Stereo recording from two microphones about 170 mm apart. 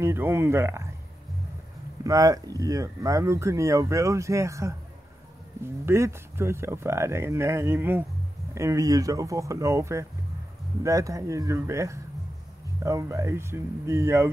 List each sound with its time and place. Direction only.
0.0 s speech: 15° right (ahead or behind)
2.0 s speech: 20° right (ahead or behind)
5.9 s speech: 15° right (ahead or behind)